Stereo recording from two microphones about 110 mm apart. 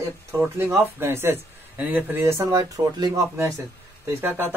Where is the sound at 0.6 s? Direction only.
20° right (ahead or behind).